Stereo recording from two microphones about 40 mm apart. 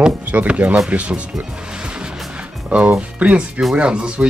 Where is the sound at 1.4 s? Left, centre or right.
Right.